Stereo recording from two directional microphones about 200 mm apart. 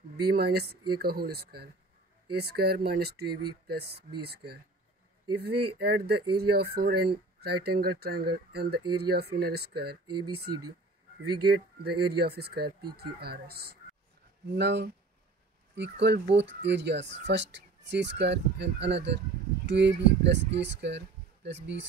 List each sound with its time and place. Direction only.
0.3 s speech: 55° right (ahead or behind)
11.2 s speech: 50° right (ahead or behind)